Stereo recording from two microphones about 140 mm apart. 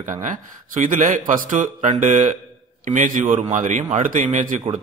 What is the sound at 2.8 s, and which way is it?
A man's voice, 70° right (ahead or behind).